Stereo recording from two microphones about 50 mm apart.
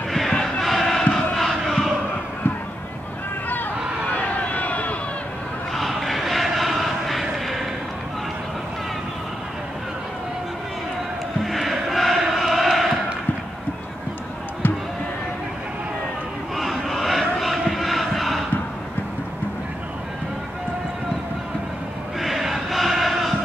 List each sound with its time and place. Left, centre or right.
0.6 s crowd: centre
4.1 s vehicle: left
5.8 s vehicle: centre
11.4 s chant: centre
16.5 s crowd: centre
22.2 s chant: centre